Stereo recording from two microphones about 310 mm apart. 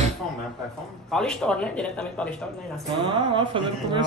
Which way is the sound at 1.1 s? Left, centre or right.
Centre.